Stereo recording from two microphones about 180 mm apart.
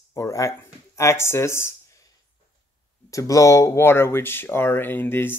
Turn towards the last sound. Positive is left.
turn(degrees=10)  # may be behind; listen again after turning